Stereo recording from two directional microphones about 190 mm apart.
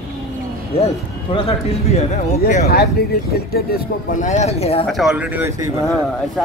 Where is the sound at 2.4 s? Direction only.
45° left (ahead or behind).